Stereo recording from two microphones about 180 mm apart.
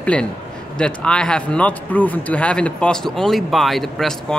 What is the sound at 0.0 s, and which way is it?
A man's voice, 5° left (ahead or behind).